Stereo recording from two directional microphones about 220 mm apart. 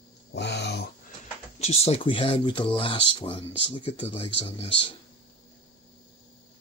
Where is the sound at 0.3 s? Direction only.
50° left (ahead or behind).